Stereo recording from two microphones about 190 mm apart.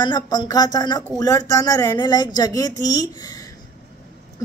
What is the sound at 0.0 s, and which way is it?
A woman's voice, 25° left (ahead or behind).